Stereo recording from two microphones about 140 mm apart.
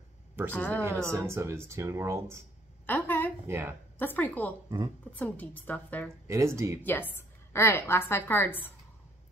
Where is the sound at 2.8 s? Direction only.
15° left (ahead or behind).